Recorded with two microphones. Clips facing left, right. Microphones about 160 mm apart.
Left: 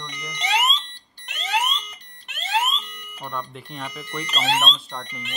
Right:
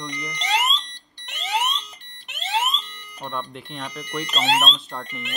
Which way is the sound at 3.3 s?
Centre (ahead or behind).